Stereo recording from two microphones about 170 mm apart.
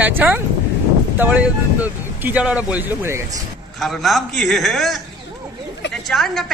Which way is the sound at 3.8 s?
Centre (ahead or behind).